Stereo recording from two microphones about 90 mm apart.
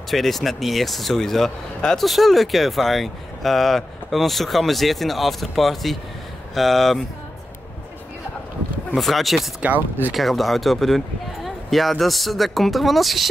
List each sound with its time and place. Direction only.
0.1 s speech: centre (ahead or behind)
8.9 s speech: centre (ahead or behind)
9.6 s speech: 20° right (ahead or behind)
10.1 s speech: centre (ahead or behind)